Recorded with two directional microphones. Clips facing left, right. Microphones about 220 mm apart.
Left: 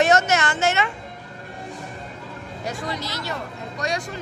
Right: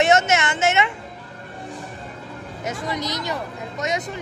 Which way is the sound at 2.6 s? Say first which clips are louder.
Right 3 dB; 20° right (ahead or behind).